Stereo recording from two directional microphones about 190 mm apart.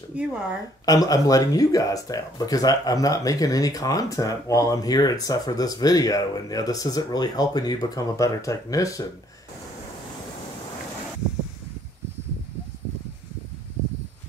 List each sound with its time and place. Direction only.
0.1 s speech: 5° right (ahead or behind)
0.8 s speech: 20° left (ahead or behind)